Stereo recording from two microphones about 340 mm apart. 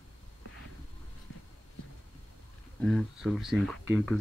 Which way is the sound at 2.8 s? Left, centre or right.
Centre.